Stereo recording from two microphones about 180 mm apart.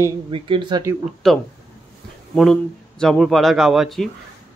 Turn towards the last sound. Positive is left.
turn(degrees=0)  # may be behind; listen again after turning